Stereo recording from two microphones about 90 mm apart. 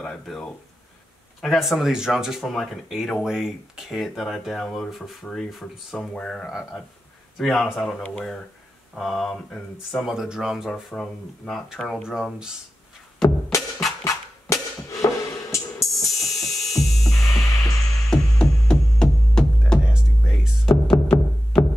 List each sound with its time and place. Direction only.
0.0 s a sound: 10° left (ahead or behind)
1.4 s speech: centre (ahead or behind)
10.7 s speech: 10° left (ahead or behind)
13.5 s music: 30° left (ahead or behind)
15.9 s music: centre (ahead or behind)
17.2 s music: 35° left (ahead or behind)
18.1 s music: 10° left (ahead or behind)
19.8 s music: 10° right (ahead or behind)
20.9 s music: 40° left (ahead or behind)